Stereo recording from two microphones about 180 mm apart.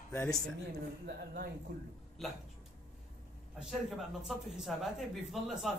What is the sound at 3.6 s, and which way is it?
A man's voice, centre (ahead or behind).